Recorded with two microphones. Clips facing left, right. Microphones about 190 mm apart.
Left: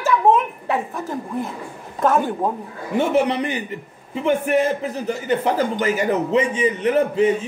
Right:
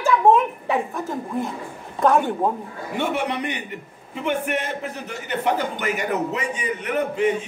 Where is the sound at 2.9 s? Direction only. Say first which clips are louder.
Left 6 dB; 35° left (ahead or behind).